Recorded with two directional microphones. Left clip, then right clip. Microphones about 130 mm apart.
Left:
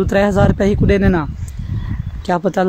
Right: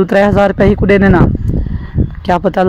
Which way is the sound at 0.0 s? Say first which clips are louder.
Right 5 dB; 55° right (ahead or behind).